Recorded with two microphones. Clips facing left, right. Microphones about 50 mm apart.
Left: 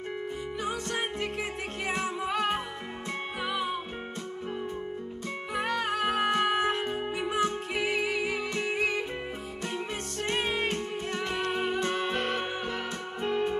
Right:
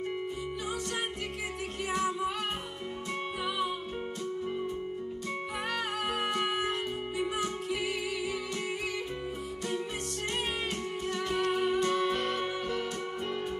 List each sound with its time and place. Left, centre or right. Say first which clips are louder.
1.9 s music: even; left
5.6 s music: left 7 dB; left
10.3 s music: left 6 dB; left